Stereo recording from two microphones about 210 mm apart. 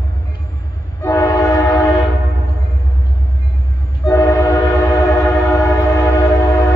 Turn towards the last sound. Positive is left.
turn(degrees=15)  # may be behind; listen again after turning